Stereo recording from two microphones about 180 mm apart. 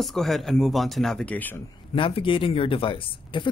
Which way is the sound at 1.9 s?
30° left (ahead or behind).